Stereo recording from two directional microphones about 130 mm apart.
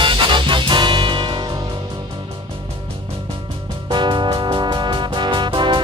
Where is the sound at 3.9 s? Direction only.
35° right (ahead or behind).